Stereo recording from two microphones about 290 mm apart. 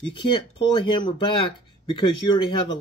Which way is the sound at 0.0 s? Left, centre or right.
Centre.